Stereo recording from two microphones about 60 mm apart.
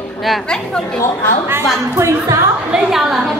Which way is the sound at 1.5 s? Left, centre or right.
Right.